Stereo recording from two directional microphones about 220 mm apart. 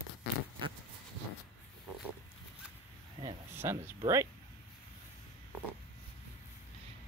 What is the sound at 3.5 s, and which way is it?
Speech, 10° right (ahead or behind).